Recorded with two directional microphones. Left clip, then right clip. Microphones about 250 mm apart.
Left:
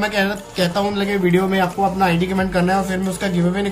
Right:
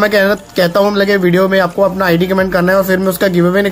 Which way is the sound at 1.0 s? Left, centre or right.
Centre.